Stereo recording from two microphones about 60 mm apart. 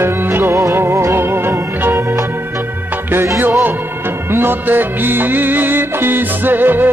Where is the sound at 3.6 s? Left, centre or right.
Right.